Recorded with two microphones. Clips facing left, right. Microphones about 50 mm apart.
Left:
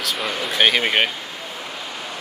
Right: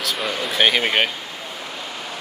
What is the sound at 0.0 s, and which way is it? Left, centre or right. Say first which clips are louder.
Speech: even; centre.